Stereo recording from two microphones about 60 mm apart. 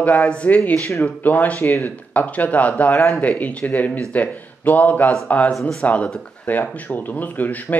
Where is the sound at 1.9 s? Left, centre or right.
Left.